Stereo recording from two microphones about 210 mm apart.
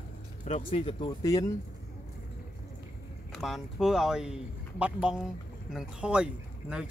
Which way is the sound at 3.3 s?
Centre (ahead or behind).